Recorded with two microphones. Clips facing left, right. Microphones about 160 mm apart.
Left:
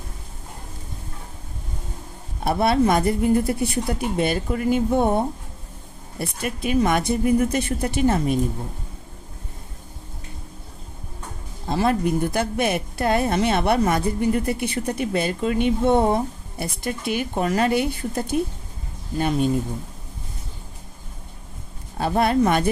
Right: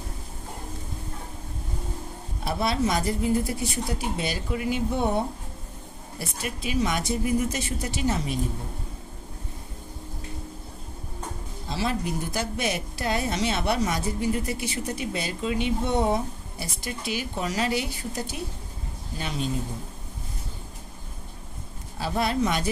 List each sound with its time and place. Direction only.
2.4 s a woman's voice: 55° left (ahead or behind)
11.6 s a woman's voice: 55° left (ahead or behind)
21.9 s a woman's voice: 55° left (ahead or behind)